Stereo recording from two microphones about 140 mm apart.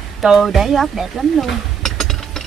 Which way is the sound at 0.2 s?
Centre (ahead or behind).